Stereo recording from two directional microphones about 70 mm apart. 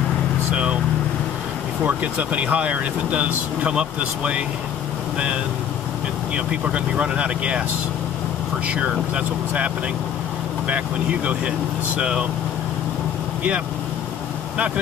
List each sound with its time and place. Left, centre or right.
1.9 s speech: right
6.3 s speech: centre
8.6 s speech: centre
10.7 s speech: centre